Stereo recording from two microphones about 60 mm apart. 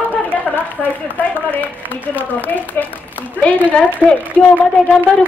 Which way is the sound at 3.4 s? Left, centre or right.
Left.